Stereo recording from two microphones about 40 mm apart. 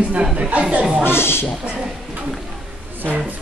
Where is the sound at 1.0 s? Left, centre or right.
Left.